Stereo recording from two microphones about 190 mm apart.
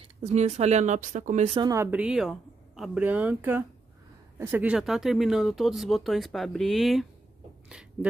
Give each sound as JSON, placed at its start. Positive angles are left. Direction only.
{"t": 0.2, "sound": "speech", "side_deg": -35}
{"t": 1.6, "sound": "speech", "side_deg": -15}